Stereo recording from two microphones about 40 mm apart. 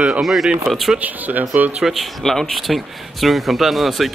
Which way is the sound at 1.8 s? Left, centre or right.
Centre.